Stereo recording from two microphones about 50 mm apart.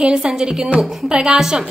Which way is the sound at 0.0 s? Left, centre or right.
Centre.